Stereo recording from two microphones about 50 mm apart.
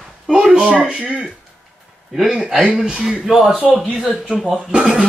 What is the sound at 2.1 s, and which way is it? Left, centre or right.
Speech, centre.